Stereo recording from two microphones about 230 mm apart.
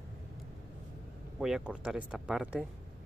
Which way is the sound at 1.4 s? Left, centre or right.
Centre.